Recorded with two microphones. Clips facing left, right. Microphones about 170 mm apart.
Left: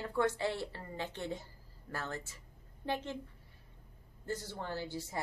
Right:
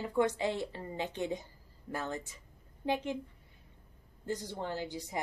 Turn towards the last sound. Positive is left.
turn(degrees=-15)  # may be behind; listen again after turning